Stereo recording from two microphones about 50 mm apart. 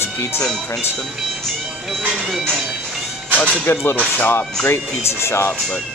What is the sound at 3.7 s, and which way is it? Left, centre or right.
Speech, left.